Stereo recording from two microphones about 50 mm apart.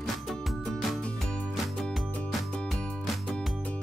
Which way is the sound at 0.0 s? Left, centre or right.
Centre.